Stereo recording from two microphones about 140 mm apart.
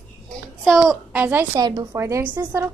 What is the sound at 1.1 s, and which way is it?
Speech, 15° right (ahead or behind).